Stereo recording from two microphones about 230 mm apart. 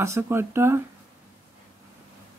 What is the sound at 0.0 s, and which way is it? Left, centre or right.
Speech, centre.